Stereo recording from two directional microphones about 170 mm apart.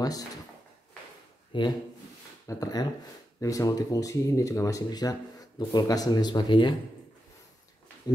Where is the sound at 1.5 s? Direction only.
30° left (ahead or behind).